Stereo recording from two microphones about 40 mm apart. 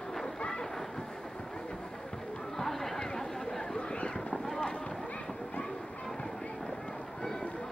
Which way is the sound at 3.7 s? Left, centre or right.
Left.